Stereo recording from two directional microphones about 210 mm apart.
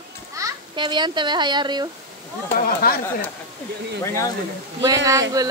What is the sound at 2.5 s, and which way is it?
Speech, 45° left (ahead or behind).